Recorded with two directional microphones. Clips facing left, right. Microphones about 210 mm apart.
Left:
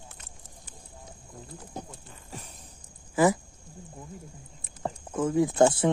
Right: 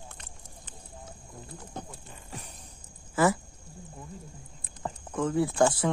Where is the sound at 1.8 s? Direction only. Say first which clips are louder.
Left 1 dB; 10° left (ahead or behind).